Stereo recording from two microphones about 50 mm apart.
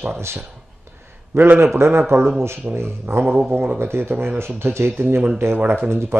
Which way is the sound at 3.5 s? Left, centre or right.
Right.